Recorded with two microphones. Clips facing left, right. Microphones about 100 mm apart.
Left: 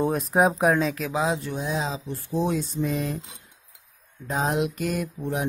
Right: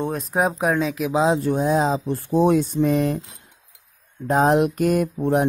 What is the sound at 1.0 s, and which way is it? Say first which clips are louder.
Speech: right 6 dB; 25° right (ahead or behind).